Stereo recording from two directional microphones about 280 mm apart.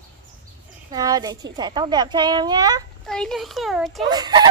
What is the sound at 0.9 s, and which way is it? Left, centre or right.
A woman's voice, centre.